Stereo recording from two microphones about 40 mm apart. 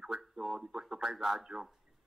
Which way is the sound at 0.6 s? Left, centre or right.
Centre.